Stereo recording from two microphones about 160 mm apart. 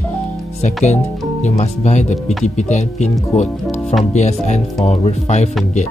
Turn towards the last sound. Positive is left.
turn(degrees=45)  # may be behind; listen again after turning